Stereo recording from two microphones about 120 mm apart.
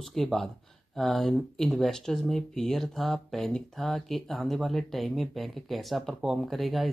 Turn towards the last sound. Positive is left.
turn(degrees=0)  # may be behind; listen again after turning